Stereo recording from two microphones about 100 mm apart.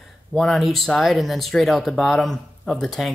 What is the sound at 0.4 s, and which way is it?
Speech, centre (ahead or behind).